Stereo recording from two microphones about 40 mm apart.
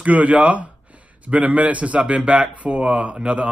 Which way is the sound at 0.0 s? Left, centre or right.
Right.